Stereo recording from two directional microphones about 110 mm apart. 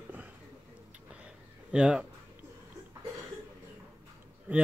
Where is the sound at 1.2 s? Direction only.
10° right (ahead or behind).